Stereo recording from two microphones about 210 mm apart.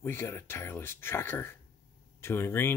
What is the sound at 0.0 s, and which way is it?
Speech, 10° left (ahead or behind).